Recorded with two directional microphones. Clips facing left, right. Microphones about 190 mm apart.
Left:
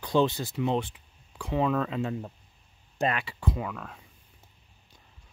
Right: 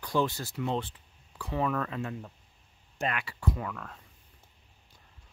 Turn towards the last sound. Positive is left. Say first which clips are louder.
# left 2 dB
turn(degrees=15)  # may be behind; listen again after turning